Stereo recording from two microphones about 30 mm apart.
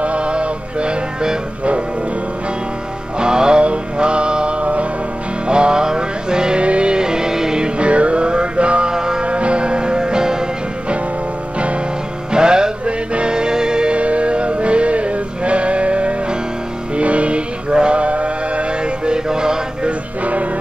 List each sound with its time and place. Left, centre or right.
0.0 s music: right
3.2 s music: right
3.6 s mantra: right
4.6 s music: right
5.5 s music: right
6.6 s music: right
7.0 s music: right
7.8 s music: right
8.9 s music: right
9.2 s music: right
12.3 s music: right
12.8 s music: right
13.9 s music: right
19.1 s music: right